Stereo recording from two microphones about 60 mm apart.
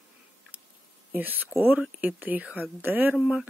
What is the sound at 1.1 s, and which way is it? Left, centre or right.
Speech, right.